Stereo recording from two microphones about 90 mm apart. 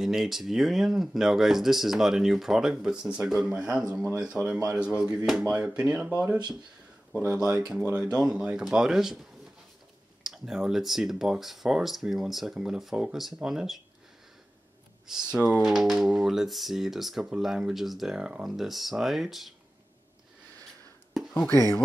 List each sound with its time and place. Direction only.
0.0 s speech: 5° right (ahead or behind)
3.9 s speech: 25° right (ahead or behind)
4.2 s speech: 10° right (ahead or behind)
7.3 s speech: 10° right (ahead or behind)
10.2 s speech: 5° right (ahead or behind)
15.0 s speech: 5° right (ahead or behind)
21.2 s a sound: centre (ahead or behind)
21.5 s speech: 45° right (ahead or behind)